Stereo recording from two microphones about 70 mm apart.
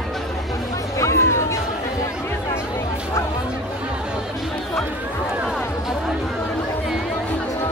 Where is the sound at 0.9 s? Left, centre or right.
Left.